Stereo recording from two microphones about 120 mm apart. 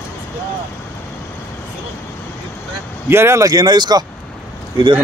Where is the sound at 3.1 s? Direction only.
20° right (ahead or behind); by 4.0 s 40° right (ahead or behind).